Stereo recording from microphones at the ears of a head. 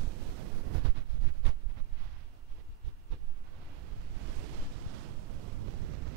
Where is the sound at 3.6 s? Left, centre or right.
Right.